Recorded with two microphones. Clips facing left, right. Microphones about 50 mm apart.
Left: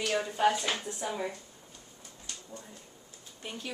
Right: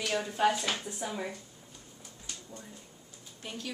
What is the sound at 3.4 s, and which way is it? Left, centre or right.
Speech, centre.